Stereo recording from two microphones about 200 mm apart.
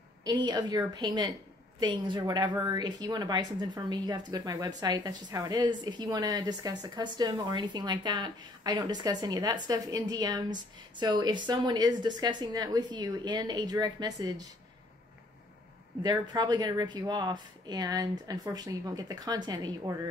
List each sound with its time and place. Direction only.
0.2 s a woman's voice: 20° right (ahead or behind)
16.0 s a woman's voice: 20° right (ahead or behind)